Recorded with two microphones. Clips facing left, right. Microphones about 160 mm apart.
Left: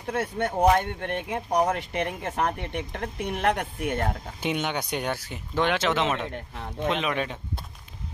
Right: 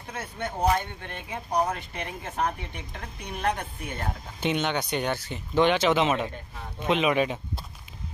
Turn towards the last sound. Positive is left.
turn(degrees=-10)  # may be behind; listen again after turning